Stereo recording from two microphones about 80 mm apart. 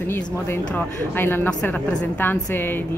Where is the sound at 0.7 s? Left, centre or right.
Left.